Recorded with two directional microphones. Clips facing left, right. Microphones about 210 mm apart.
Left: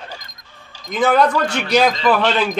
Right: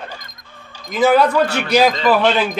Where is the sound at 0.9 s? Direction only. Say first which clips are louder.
Right 2 dB; 5° right (ahead or behind).